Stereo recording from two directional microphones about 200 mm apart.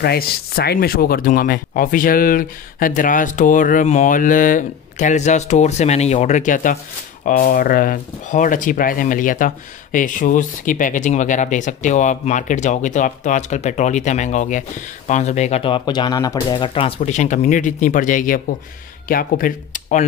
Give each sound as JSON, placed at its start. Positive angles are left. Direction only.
{"t": 0.0, "sound": "speech", "side_deg": 50}